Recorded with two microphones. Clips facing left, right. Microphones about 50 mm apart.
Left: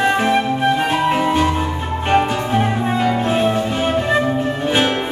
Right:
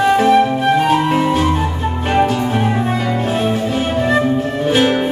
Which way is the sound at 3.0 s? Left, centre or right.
Centre.